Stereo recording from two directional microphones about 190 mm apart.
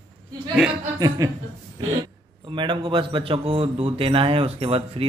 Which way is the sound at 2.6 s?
25° right (ahead or behind).